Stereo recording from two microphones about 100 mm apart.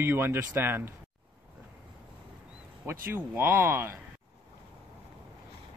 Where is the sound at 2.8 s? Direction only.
20° right (ahead or behind).